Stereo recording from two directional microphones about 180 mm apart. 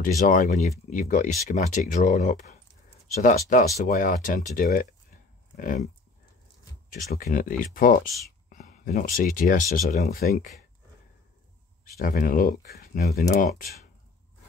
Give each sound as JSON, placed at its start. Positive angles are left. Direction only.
{"t": 0.0, "sound": "speech", "side_deg": 45}
{"t": 7.1, "sound": "speech", "side_deg": 55}
{"t": 12.0, "sound": "speech", "side_deg": 50}